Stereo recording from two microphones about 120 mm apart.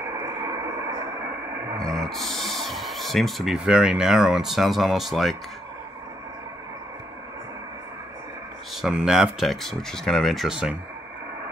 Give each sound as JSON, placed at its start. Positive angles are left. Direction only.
{"t": 0.1, "sound": "a sound", "side_deg": -30}
{"t": 1.8, "sound": "speech", "side_deg": 5}
{"t": 8.8, "sound": "speech", "side_deg": -5}